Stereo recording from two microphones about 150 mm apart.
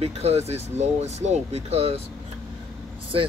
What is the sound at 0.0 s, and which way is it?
Speech, 45° right (ahead or behind).